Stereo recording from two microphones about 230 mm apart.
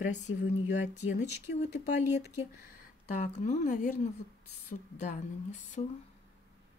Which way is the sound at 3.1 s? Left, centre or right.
Left.